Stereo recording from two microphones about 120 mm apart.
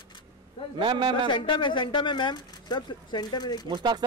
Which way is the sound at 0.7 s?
45° right (ahead or behind).